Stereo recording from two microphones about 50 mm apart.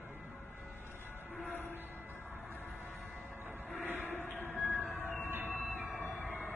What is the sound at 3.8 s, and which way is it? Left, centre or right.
Train, right.